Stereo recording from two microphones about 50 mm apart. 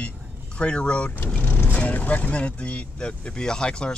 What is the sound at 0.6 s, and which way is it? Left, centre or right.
Speech, left.